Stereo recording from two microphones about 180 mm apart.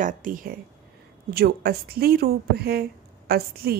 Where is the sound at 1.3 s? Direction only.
60° right (ahead or behind).